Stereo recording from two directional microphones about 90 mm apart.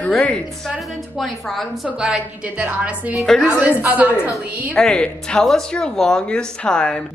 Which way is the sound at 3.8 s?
20° right (ahead or behind).